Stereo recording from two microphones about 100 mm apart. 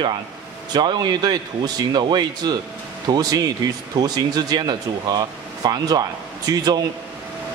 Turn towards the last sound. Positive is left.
turn(degrees=-40)  # may be behind; listen again after turning